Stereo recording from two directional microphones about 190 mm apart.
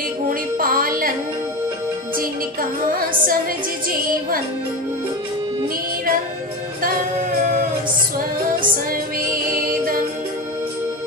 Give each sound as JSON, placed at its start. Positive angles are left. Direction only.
{"t": 0.3, "sound": "music", "side_deg": -50}